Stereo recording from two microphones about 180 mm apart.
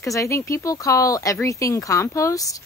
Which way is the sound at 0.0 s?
15° left (ahead or behind).